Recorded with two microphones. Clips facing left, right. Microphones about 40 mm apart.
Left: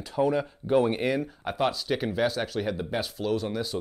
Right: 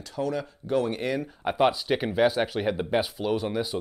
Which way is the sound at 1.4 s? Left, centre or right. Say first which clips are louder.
Right 8 dB; centre.